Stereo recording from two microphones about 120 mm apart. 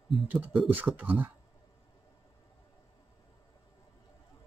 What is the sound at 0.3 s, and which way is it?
Speech, 15° right (ahead or behind).